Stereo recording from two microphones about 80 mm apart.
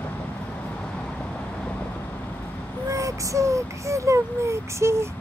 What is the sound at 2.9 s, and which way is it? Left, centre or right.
Child singing, right.